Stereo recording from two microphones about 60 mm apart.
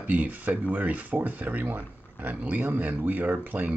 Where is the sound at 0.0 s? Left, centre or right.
Right.